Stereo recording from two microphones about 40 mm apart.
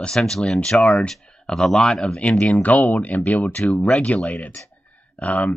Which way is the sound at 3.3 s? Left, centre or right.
Left.